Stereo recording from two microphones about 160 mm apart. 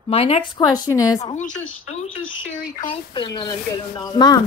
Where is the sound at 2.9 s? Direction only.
30° left (ahead or behind).